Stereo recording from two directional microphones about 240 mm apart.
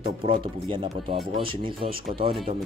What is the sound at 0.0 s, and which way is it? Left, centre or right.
Speech, right.